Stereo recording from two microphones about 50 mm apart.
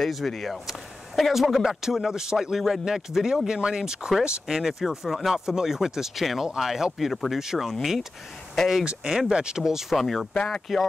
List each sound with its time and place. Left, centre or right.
0.0 s speech: centre
10.3 s speech: centre